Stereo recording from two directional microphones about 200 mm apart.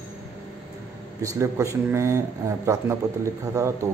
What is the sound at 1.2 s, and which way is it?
A man's voice, 15° right (ahead or behind).